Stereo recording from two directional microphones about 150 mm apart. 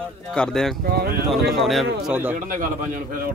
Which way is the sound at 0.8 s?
90° right.